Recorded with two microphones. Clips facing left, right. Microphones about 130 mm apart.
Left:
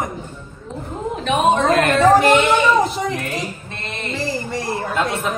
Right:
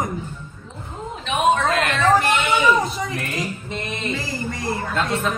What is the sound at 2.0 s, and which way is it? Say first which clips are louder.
Music: left 5 dB; centre (ahead or behind).